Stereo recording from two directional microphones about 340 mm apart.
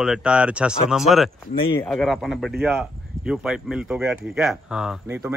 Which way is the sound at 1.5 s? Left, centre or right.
Centre.